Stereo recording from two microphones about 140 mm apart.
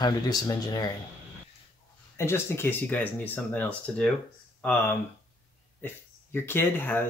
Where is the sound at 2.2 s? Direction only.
20° left (ahead or behind).